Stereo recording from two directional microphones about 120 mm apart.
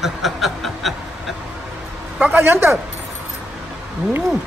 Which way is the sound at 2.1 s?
15° right (ahead or behind).